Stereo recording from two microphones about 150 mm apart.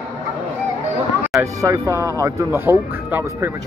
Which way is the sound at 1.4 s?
20° right (ahead or behind).